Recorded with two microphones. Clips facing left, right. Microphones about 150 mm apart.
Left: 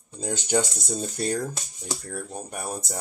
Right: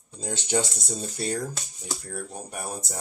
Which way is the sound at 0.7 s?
Centre (ahead or behind).